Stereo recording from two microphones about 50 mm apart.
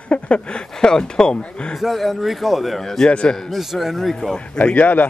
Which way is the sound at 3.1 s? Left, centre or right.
Left.